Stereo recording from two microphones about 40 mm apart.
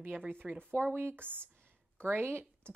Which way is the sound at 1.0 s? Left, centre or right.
Right.